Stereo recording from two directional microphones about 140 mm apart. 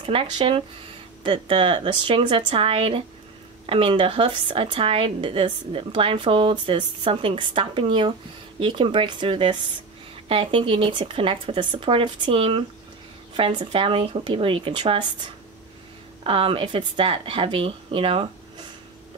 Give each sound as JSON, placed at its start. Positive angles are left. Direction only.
{"t": 0.0, "sound": "a woman's voice", "side_deg": -40}
{"t": 16.3, "sound": "a woman's voice", "side_deg": -40}